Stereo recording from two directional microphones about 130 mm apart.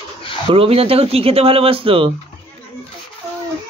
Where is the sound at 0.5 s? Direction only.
45° right (ahead or behind).